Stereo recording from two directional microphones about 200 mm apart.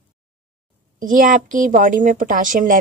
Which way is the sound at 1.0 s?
45° right (ahead or behind).